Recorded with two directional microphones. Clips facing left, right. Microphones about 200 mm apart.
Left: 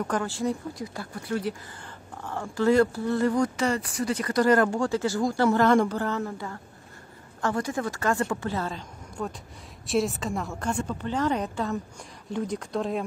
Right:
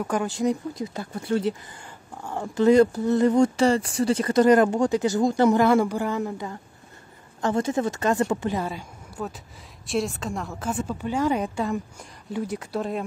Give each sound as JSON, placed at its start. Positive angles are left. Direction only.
{"t": 0.0, "sound": "a woman's voice", "side_deg": -15}